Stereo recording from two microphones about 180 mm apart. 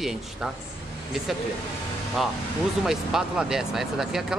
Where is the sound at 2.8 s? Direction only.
5° right (ahead or behind).